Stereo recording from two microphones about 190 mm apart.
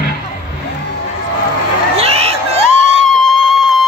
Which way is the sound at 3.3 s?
Centre (ahead or behind).